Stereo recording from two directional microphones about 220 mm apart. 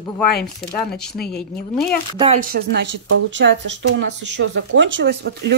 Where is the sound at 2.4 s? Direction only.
45° right (ahead or behind).